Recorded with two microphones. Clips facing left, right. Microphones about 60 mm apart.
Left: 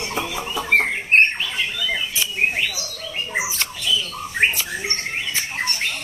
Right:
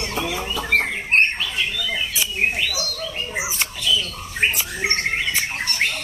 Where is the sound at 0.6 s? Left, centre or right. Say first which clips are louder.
Left 2 dB; left.